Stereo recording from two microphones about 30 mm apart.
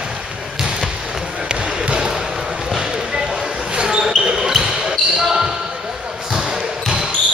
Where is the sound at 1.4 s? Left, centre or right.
Right; by 6.6 s centre.